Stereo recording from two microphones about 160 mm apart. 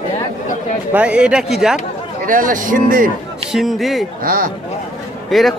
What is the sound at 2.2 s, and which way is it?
Speech, 55° right (ahead or behind).